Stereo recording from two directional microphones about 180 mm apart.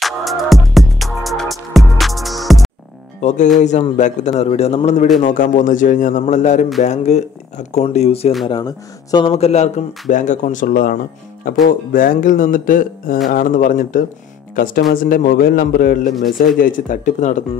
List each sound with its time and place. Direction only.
0.0 s music: centre (ahead or behind)
3.2 s speech: 40° left (ahead or behind)
5.2 s speech: 45° left (ahead or behind)
8.5 s speech: 25° left (ahead or behind); by 17.4 s 45° left (ahead or behind)